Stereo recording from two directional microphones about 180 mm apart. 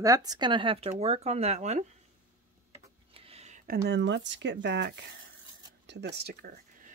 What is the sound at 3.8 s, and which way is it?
Speech, 75° right (ahead or behind).